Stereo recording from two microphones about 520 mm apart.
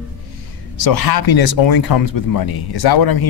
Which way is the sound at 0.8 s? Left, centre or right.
Left.